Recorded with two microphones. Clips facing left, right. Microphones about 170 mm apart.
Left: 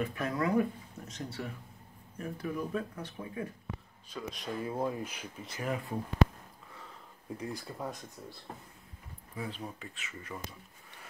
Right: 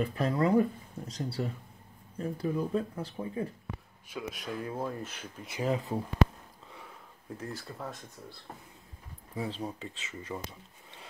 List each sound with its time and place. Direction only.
0.0 s speech: 30° right (ahead or behind)
4.1 s speech: 5° right (ahead or behind)
4.7 s speech: 10° left (ahead or behind)
5.6 s speech: 25° right (ahead or behind)
7.3 s speech: 10° left (ahead or behind)
9.3 s speech: 25° right (ahead or behind)